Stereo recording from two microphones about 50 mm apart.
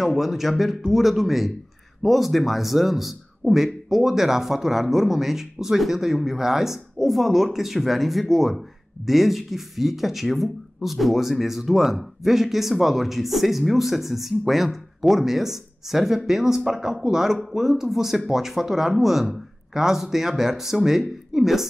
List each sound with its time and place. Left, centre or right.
0.0 s speech: centre